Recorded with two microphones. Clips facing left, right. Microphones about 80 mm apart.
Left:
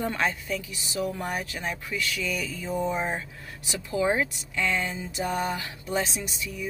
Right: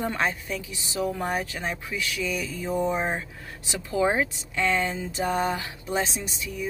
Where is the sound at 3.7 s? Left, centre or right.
Right.